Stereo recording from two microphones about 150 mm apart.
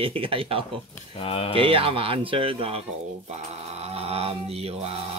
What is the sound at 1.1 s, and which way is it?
Speech, 35° left (ahead or behind).